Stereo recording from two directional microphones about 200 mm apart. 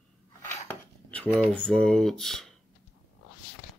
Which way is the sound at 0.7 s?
10° left (ahead or behind).